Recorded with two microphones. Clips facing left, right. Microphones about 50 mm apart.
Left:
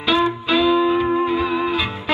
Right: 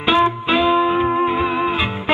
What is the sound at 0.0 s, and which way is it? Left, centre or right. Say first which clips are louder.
Music: right 3 dB; right.